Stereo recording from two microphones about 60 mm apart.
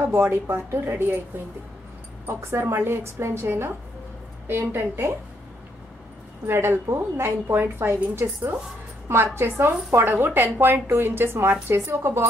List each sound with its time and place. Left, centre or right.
0.1 s a woman's voice: right
2.2 s a woman's voice: right
6.4 s a woman's voice: right